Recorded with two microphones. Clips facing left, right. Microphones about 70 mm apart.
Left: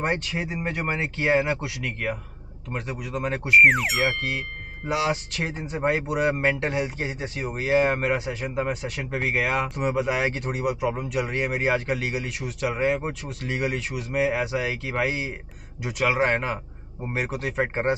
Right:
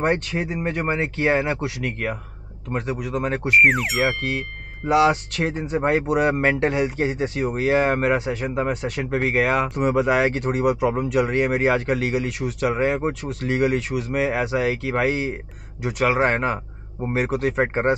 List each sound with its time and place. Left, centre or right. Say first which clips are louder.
0.0 s speech: right 4 dB; right
3.4 s speech: left 1 dB; centre
4.8 s speech: right 8 dB; right